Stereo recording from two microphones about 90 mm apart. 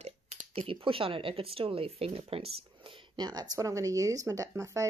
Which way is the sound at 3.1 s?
50° right (ahead or behind).